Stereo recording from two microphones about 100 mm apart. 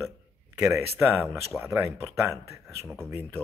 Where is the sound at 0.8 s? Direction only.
25° right (ahead or behind).